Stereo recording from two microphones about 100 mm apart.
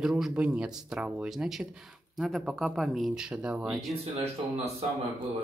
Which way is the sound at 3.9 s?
90° right.